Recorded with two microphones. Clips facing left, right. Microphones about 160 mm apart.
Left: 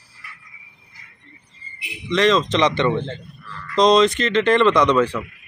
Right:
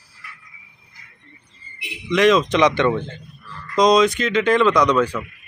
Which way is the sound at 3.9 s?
Centre (ahead or behind).